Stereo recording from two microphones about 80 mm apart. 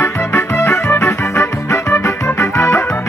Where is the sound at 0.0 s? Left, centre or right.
Left.